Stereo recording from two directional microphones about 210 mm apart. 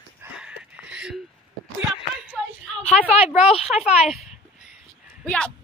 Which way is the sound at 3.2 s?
30° left (ahead or behind).